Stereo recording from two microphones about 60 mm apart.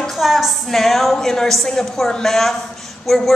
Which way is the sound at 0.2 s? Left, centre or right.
Centre.